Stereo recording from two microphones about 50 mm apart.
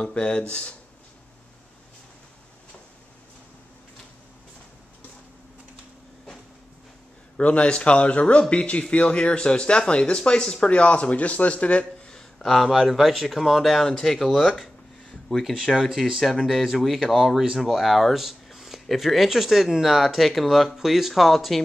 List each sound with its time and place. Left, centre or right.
0.0 s speech: left
7.3 s speech: left
12.4 s speech: centre
15.7 s speech: centre